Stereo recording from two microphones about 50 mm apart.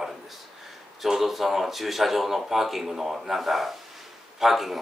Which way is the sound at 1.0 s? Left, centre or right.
Centre.